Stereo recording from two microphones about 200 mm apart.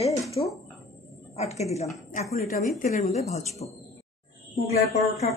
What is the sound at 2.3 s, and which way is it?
Speech, 45° left (ahead or behind).